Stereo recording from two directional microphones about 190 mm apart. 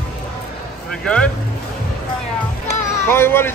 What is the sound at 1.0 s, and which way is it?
Speech, 5° left (ahead or behind).